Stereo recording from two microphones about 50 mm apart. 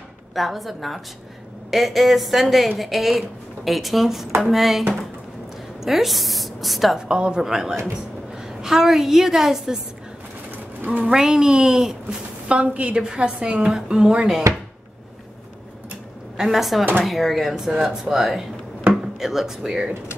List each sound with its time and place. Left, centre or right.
0.3 s a woman's voice: centre
5.9 s a woman's voice: centre
7.0 s a woman's voice: centre
11.1 s a woman's voice: centre
16.3 s a woman's voice: centre